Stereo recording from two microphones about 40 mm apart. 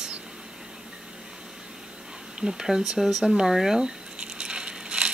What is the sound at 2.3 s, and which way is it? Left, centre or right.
Coin, centre.